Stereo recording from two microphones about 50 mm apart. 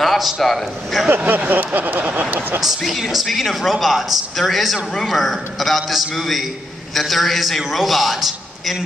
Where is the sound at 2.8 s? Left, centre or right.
Centre.